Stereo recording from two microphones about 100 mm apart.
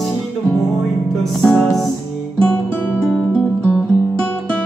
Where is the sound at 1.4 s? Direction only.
5° left (ahead or behind).